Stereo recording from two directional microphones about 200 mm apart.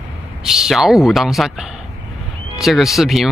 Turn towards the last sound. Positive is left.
turn(degrees=0)  # may be behind; listen again after turning